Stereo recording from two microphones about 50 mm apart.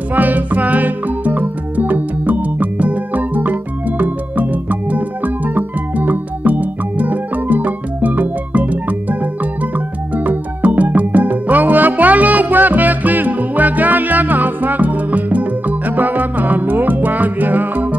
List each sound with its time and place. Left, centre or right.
0.1 s music: right